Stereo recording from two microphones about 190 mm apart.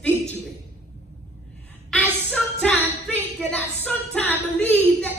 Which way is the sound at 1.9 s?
5° left (ahead or behind).